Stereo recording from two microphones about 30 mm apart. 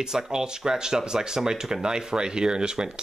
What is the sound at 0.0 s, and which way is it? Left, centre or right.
Speech, centre.